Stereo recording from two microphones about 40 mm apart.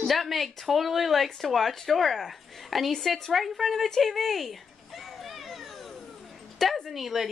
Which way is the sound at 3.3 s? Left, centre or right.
Centre.